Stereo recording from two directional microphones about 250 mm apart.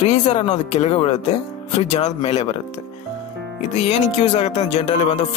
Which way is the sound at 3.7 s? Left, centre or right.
Left.